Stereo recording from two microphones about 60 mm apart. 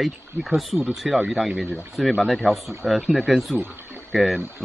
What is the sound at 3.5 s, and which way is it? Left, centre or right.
Speech, right.